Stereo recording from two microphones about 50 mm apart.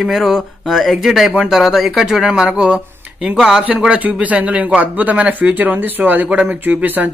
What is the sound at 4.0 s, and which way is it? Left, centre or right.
Speech, right.